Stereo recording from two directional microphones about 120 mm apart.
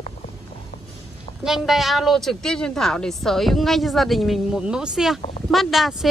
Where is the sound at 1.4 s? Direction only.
Centre (ahead or behind).